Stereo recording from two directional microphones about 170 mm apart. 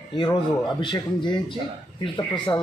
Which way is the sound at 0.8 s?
25° left (ahead or behind).